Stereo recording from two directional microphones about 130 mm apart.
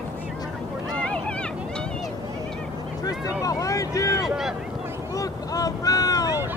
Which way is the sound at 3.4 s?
25° left (ahead or behind).